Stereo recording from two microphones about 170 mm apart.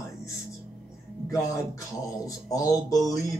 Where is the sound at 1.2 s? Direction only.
20° left (ahead or behind).